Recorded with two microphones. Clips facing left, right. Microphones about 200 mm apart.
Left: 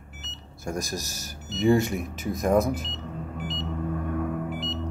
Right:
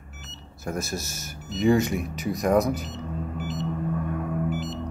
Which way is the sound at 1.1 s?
35° left (ahead or behind).